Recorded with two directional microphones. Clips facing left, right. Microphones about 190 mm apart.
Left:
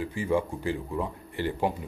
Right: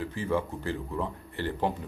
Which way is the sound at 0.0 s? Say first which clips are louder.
Left 2 dB; 15° left (ahead or behind).